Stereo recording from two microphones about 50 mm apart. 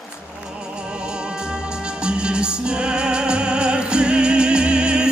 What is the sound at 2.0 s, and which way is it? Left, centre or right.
Music, centre.